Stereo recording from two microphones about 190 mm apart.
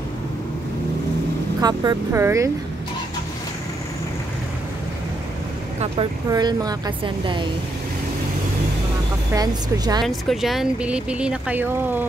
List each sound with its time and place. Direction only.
1.6 s speech: 20° right (ahead or behind)
6.3 s speech: 20° right (ahead or behind)
9.3 s speech: 20° right (ahead or behind)
10.0 s speech: centre (ahead or behind)